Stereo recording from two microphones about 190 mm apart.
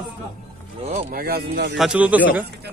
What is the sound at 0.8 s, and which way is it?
Speech, 35° right (ahead or behind).